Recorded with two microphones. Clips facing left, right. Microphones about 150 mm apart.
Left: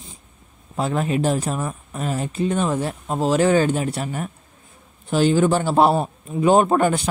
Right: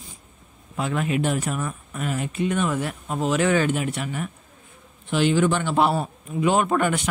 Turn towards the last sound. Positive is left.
turn(degrees=35)  # may be behind; listen again after turning